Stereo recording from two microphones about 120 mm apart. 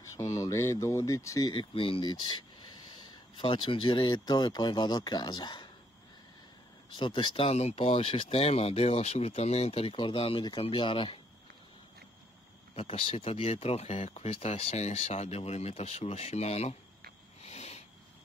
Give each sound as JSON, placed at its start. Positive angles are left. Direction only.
{"t": 0.2, "sound": "speech", "side_deg": 30}
{"t": 1.5, "sound": "speech", "side_deg": 45}
{"t": 7.0, "sound": "speech", "side_deg": 40}
{"t": 7.4, "sound": "speech", "side_deg": 65}
{"t": 12.7, "sound": "speech", "side_deg": 50}
{"t": 17.4, "sound": "a sound", "side_deg": 65}